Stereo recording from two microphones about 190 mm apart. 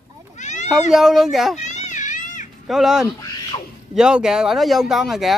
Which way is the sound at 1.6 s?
40° left (ahead or behind).